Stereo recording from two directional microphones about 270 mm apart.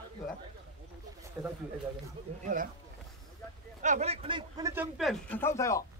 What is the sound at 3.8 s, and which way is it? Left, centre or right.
Speech, right.